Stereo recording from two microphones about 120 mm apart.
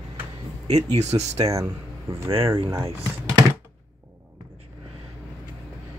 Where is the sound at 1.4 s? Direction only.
25° right (ahead or behind).